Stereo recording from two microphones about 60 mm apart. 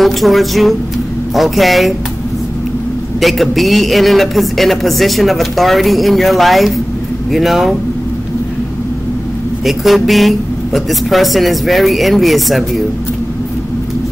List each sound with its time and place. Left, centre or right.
0.0 s a man's voice: centre
3.2 s a man's voice: centre
9.7 s a man's voice: centre